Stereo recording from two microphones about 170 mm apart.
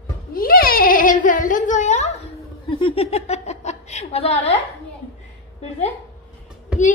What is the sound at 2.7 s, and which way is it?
A woman's voice, 30° left (ahead or behind).